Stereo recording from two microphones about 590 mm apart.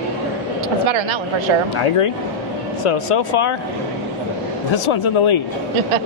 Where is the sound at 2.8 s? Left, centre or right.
Left.